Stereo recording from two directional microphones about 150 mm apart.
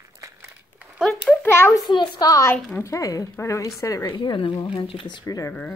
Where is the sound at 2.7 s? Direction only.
20° left (ahead or behind).